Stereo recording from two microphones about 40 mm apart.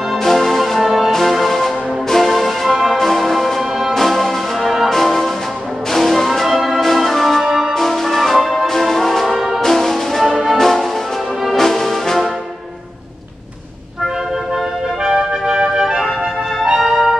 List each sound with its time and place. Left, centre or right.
0.2 s music: centre
2.7 s music: centre
3.0 s music: centre
7.4 s music: centre
7.7 s music: centre
9.6 s brass instrument: centre
10.2 s music: centre
10.6 s music: centre
15.1 s music: centre
16.8 s music: centre